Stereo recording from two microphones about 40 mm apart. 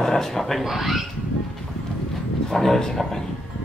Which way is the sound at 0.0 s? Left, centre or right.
Centre.